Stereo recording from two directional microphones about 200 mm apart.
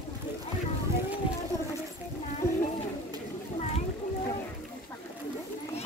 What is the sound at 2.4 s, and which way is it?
Children playing, 10° left (ahead or behind).